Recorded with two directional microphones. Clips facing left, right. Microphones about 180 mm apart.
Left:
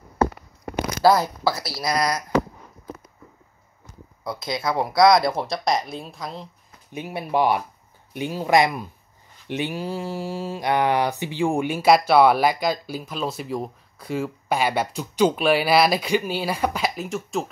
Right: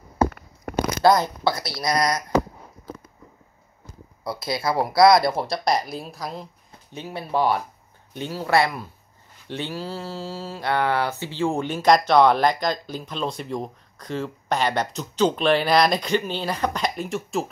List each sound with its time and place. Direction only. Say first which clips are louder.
1.0 s speech: left 1 dB; 5° left (ahead or behind)
4.5 s speech: right 1 dB; 5° right (ahead or behind)
6.9 s mantra: left 2 dB; 15° left (ahead or behind)